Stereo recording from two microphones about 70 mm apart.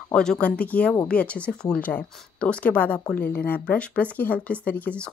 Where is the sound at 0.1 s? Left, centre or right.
Centre.